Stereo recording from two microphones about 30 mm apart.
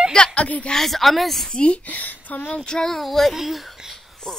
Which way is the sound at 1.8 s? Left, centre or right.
Left.